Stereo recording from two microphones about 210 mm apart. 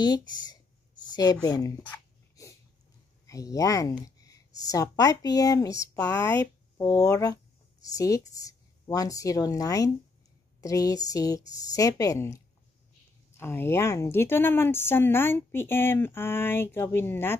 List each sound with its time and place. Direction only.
0.0 s speech: 20° left (ahead or behind)
1.1 s a sound: 20° left (ahead or behind)
3.3 s speech: 15° left (ahead or behind)
13.4 s speech: 10° left (ahead or behind)